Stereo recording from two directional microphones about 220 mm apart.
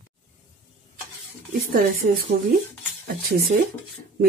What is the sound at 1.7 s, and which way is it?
Speech, 40° right (ahead or behind).